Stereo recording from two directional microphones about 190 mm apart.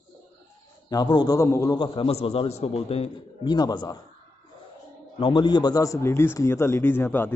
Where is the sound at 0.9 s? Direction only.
20° left (ahead or behind).